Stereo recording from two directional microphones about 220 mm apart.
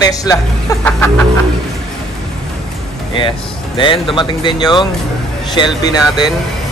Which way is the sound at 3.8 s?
20° left (ahead or behind).